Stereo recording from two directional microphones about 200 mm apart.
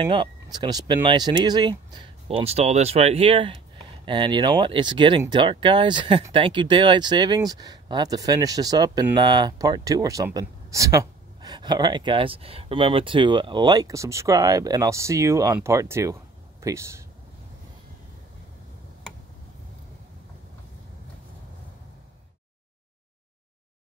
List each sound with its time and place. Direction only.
0.0 s speech: 25° right (ahead or behind)